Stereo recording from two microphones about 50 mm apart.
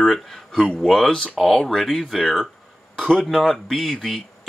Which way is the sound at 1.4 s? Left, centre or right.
Centre.